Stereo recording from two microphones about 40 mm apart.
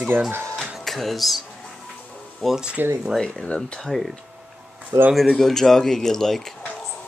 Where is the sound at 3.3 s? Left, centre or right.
Left.